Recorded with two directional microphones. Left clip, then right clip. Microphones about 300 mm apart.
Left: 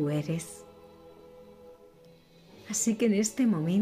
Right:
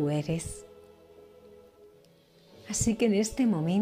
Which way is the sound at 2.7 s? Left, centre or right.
Centre.